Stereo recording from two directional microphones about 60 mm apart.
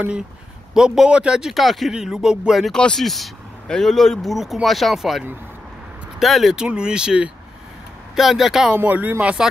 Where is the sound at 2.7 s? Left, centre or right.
Centre.